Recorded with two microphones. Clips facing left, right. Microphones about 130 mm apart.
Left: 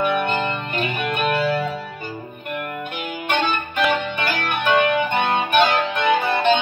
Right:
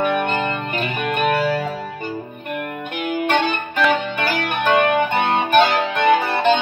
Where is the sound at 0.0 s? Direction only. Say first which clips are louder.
Right 1 dB; 40° right (ahead or behind).